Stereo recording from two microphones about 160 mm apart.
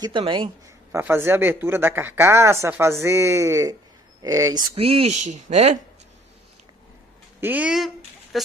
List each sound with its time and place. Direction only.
0.0 s speech: 30° right (ahead or behind)
0.9 s speech: 15° right (ahead or behind); by 5.8 s 45° right (ahead or behind)
7.3 s speech: 10° right (ahead or behind)